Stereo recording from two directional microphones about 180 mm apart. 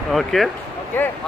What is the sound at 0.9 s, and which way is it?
Speech, 10° left (ahead or behind).